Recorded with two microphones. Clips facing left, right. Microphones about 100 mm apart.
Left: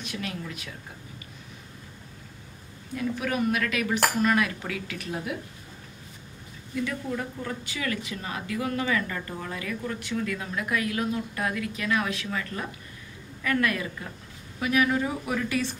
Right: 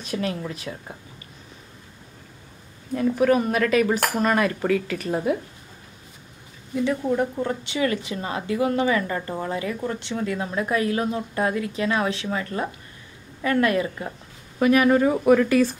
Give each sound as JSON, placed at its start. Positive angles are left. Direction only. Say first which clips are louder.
{"t": 0.0, "sound": "speech", "louder": "right 7 dB", "side_deg": -35}
{"t": 3.0, "sound": "speech", "louder": "right 8 dB", "side_deg": -35}
{"t": 6.7, "sound": "a woman's voice", "louder": "right 7 dB", "side_deg": -25}
{"t": 14.6, "sound": "speech", "louder": "right 7 dB", "side_deg": -50}